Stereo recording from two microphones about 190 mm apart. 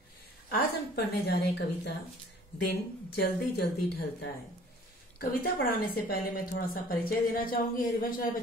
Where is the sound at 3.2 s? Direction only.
60° left (ahead or behind).